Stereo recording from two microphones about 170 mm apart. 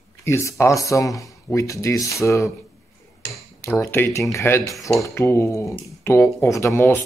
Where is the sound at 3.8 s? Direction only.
15° left (ahead or behind).